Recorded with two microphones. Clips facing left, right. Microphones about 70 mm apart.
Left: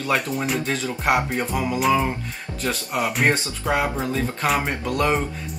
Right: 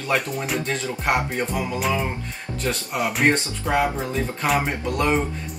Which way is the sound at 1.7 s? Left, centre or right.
Centre.